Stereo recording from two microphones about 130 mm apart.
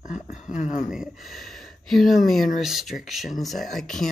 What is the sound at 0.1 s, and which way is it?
Speech, 70° left (ahead or behind).